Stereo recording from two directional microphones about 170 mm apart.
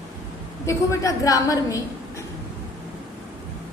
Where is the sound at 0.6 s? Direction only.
15° left (ahead or behind).